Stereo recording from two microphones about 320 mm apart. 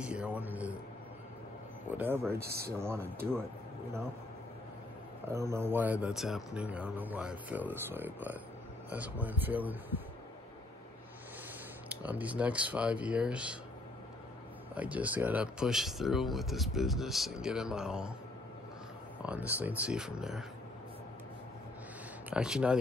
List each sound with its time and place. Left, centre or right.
0.0 s speech: centre
1.9 s speech: centre
2.4 s speech: right
2.8 s speech: centre
5.3 s speech: centre
11.9 s speech: centre
14.8 s speech: centre
19.2 s speech: centre
22.3 s speech: centre